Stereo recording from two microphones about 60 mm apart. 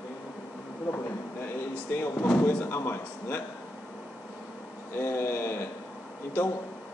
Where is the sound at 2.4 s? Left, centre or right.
Left.